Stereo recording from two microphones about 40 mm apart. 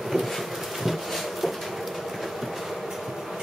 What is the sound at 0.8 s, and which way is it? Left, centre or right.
Bee, centre.